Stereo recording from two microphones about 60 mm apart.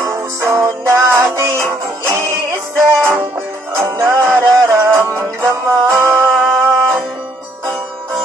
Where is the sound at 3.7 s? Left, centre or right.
Right.